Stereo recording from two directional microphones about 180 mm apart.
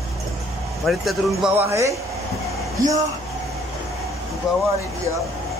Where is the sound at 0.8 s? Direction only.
Centre (ahead or behind).